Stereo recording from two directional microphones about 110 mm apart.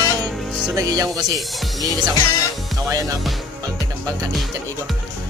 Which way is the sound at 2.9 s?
35° right (ahead or behind).